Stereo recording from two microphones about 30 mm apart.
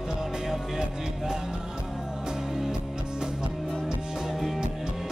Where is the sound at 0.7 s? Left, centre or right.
Centre.